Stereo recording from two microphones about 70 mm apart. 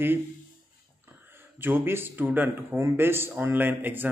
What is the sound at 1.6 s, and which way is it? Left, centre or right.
Speech, right.